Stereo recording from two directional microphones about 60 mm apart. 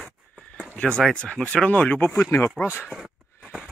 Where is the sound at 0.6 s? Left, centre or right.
Left.